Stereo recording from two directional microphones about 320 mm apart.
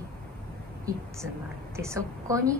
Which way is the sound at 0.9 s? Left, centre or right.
Centre.